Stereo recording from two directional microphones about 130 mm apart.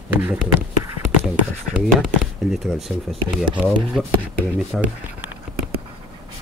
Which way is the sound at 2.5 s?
Centre (ahead or behind).